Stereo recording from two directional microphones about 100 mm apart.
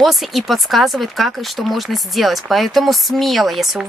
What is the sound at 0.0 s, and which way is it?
Speech, centre (ahead or behind).